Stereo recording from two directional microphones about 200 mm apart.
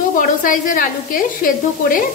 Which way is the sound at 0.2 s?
40° left (ahead or behind).